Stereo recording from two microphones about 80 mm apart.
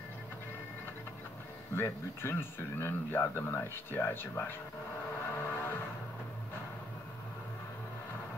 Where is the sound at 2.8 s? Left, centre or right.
Left.